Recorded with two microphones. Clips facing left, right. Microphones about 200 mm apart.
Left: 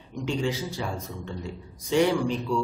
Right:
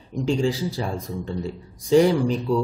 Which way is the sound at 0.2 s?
30° right (ahead or behind).